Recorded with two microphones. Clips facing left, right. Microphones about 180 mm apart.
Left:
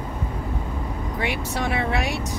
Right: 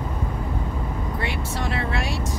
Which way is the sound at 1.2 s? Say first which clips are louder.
Left 5 dB; 70° left (ahead or behind).